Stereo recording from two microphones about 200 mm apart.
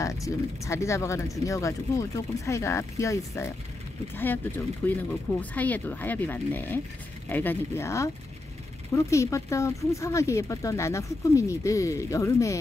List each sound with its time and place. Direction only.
0.0 s speech: 15° left (ahead or behind)